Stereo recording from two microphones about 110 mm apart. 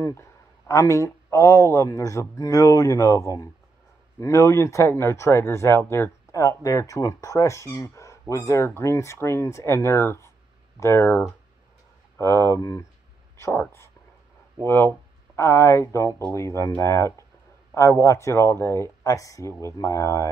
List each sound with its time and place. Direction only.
0.0 s speech: 30° left (ahead or behind)
15.3 s speech: 25° left (ahead or behind)